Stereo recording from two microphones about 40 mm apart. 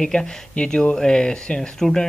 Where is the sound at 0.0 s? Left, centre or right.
Centre.